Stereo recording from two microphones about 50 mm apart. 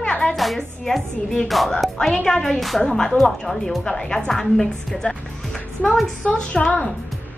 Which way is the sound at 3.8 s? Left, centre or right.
Centre.